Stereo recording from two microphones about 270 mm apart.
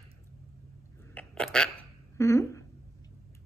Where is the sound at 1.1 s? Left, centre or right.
Centre.